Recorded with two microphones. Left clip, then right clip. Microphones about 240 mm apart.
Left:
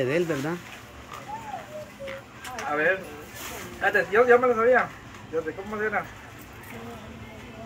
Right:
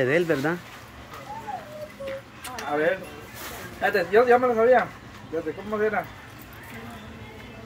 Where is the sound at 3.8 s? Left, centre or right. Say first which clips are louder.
Right 1 dB; right.